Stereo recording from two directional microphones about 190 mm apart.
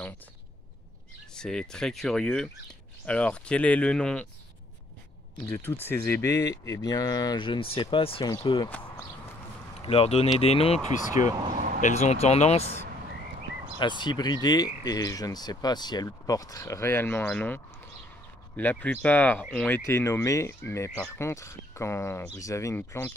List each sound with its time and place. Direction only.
1.3 s speech: 5° left (ahead or behind)
5.5 s speech: 10° left (ahead or behind); by 8.6 s 25° left (ahead or behind)
8.6 s speech: 10° left (ahead or behind)
9.8 s speech: 30° left (ahead or behind)
13.7 s speech: 25° left (ahead or behind); by 17.6 s 10° left (ahead or behind)
18.6 s speech: 10° left (ahead or behind)